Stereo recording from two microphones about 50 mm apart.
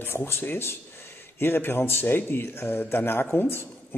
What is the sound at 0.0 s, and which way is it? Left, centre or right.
Speech, left.